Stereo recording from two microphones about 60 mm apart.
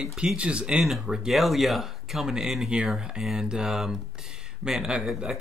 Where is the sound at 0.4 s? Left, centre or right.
Centre.